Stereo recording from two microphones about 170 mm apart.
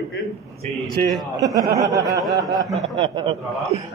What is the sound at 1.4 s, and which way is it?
A man's voice, 20° right (ahead or behind).